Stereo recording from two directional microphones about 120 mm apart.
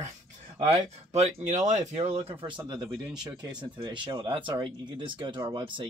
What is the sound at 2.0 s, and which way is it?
Speech, 55° right (ahead or behind).